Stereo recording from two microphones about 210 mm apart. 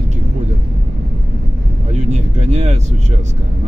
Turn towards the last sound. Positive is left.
turn(degrees=-30)  # may be behind; listen again after turning